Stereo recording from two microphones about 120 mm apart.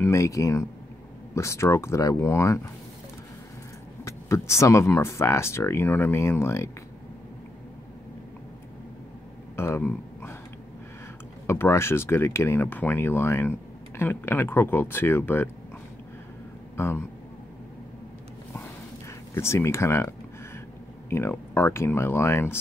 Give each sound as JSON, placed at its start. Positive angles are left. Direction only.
{"t": 0.0, "sound": "speech", "side_deg": 25}
{"t": 4.0, "sound": "speech", "side_deg": 25}
{"t": 9.6, "sound": "a sound", "side_deg": 20}
{"t": 11.4, "sound": "speech", "side_deg": 20}
{"t": 16.7, "sound": "speech", "side_deg": 20}
{"t": 19.3, "sound": "speech", "side_deg": 20}